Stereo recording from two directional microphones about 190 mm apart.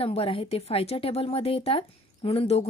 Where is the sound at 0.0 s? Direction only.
30° left (ahead or behind).